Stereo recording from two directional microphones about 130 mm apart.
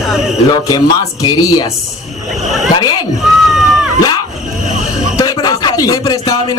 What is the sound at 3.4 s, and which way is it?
Crowd, 5° right (ahead or behind).